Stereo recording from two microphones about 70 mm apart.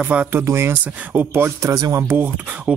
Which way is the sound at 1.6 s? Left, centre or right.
Right.